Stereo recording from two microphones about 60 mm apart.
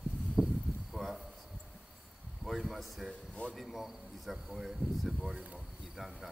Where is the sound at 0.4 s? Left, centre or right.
Centre.